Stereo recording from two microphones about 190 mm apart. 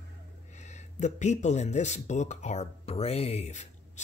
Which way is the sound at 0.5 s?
35° left (ahead or behind).